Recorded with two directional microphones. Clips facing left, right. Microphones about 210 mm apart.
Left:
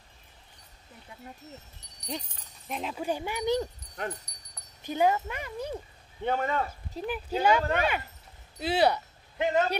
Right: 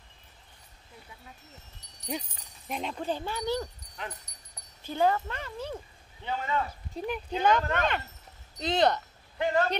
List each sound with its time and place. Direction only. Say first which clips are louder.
2.0 s speech: right 2 dB; 10° right (ahead or behind)
2.8 s speech: left 1 dB; 5° left (ahead or behind)
4.8 s speech: left 1 dB; 15° left (ahead or behind)
6.2 s speech: left 3 dB; 50° left (ahead or behind)
6.9 s speech: left 1 dB; centre (ahead or behind)
9.4 s speech: left 1 dB; 20° left (ahead or behind)